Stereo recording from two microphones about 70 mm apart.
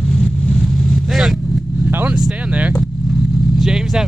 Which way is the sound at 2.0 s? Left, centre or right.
Centre.